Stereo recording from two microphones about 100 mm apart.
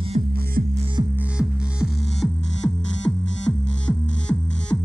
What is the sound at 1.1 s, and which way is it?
Music, 15° right (ahead or behind).